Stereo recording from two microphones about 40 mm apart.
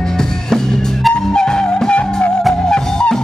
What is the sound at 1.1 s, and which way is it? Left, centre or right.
Music, centre.